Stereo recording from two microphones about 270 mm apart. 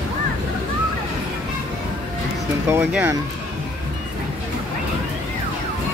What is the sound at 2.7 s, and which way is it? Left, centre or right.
Speech, centre.